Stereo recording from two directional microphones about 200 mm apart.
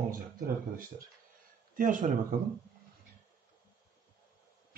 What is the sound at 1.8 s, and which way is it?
Speech, 40° right (ahead or behind).